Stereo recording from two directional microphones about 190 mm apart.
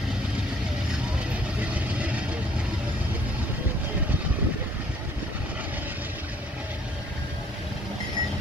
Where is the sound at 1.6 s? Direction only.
5° right (ahead or behind).